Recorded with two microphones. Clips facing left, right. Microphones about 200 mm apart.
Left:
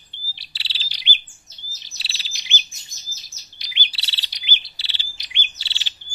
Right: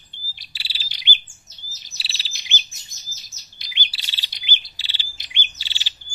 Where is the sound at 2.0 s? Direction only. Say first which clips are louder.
Right 1 dB; centre (ahead or behind).